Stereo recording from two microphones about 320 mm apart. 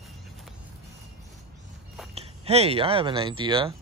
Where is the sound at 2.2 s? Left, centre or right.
Centre.